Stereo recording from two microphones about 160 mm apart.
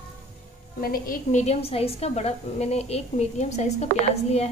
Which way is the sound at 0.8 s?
65° left (ahead or behind).